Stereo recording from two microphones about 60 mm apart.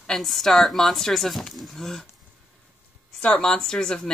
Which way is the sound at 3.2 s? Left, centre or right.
Centre.